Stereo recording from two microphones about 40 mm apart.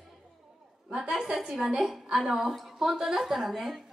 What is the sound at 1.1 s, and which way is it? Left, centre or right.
A woman's voice, centre.